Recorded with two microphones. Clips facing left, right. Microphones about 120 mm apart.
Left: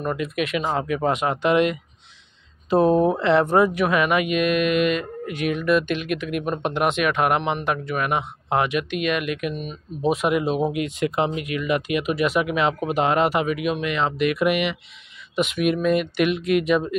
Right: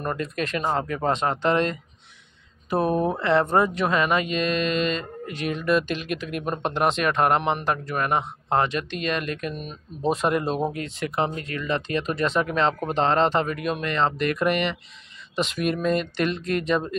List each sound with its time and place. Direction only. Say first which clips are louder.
0.0 s speech: left 3 dB; 5° left (ahead or behind)
10.7 s speech: left 6 dB; 15° left (ahead or behind)